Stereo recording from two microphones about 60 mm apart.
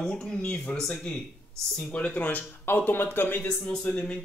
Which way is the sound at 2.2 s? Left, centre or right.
Left.